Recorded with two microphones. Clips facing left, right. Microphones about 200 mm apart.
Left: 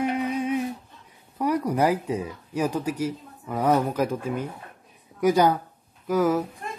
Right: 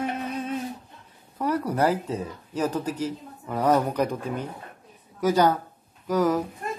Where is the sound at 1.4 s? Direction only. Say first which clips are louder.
Left 1 dB; 10° left (ahead or behind).